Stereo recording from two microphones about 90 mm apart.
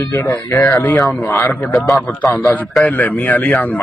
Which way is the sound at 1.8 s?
Centre (ahead or behind).